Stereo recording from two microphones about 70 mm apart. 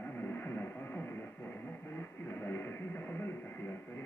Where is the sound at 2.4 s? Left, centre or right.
Left.